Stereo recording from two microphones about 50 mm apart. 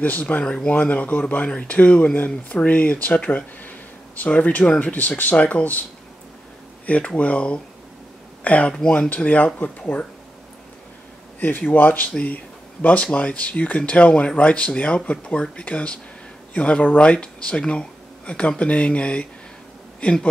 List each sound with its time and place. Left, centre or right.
0.0 s speech: left
7.2 s speech: left
11.3 s speech: left; by 20.2 s centre